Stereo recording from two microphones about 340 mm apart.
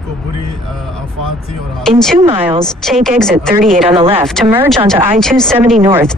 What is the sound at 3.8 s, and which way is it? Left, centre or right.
Speech, centre.